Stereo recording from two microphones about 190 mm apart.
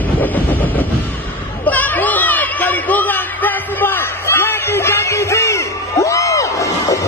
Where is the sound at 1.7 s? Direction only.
10° left (ahead or behind).